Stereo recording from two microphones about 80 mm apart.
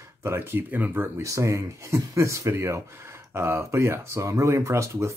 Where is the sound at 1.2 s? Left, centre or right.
Right.